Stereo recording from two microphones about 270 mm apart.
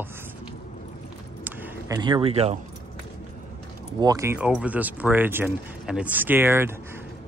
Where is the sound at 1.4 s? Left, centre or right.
Centre.